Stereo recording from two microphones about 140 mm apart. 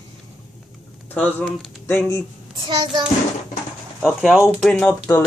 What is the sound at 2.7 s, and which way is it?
Child singing, 35° right (ahead or behind).